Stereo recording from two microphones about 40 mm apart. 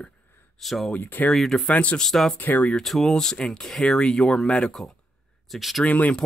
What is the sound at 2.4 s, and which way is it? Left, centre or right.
Speech, left.